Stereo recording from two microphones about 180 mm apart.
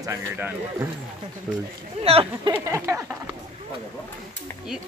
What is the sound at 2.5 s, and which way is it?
Speech, 15° right (ahead or behind).